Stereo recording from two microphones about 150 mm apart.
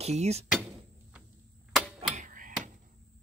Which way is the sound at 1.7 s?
5° right (ahead or behind).